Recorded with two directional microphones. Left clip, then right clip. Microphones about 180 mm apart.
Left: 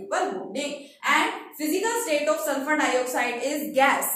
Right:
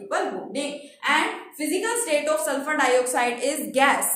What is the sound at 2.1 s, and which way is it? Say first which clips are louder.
A woman's voice: right 3 dB; 70° right (ahead or behind).